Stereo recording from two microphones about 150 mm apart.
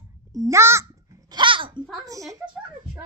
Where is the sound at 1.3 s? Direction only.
35° right (ahead or behind).